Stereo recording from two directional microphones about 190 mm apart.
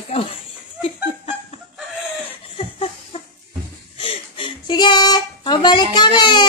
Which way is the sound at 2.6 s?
30° left (ahead or behind).